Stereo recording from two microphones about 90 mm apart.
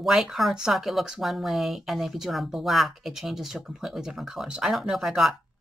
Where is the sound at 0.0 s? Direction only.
5° right (ahead or behind).